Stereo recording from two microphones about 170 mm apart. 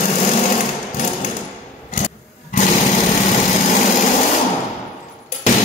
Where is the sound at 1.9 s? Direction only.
50° left (ahead or behind).